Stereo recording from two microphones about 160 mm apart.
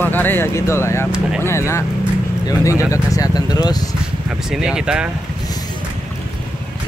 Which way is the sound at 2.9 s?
20° left (ahead or behind).